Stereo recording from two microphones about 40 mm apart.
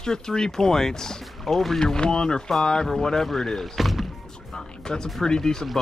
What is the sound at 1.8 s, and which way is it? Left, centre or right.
Speech, centre.